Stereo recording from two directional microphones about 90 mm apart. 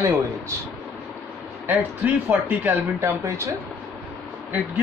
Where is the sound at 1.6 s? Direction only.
20° right (ahead or behind).